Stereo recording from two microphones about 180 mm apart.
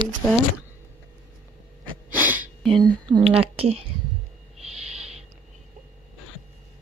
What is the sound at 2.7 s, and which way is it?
Speech, 25° right (ahead or behind).